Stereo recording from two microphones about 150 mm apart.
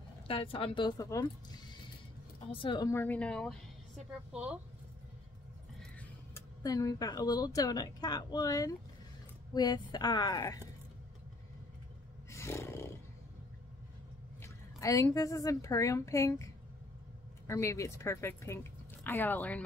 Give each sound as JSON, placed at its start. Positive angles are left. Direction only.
{"t": 0.3, "sound": "a woman's voice", "side_deg": 40}
{"t": 2.9, "sound": "a woman's voice", "side_deg": 10}
{"t": 4.3, "sound": "speech", "side_deg": -5}
{"t": 6.3, "sound": "a woman's voice", "side_deg": 25}
{"t": 12.3, "sound": "roar", "side_deg": 20}
{"t": 14.4, "sound": "a sound", "side_deg": 20}
{"t": 15.1, "sound": "a woman's voice", "side_deg": 20}
{"t": 17.5, "sound": "a woman's voice", "side_deg": 20}